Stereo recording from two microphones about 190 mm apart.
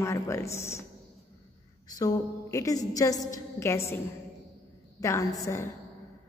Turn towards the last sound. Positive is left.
turn(degrees=15)  # may be behind; listen again after turning